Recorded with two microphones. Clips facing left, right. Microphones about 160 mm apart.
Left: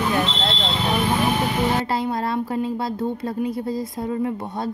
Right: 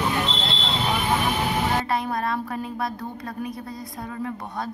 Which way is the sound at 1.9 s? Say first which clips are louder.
Left 3 dB; 25° left (ahead or behind).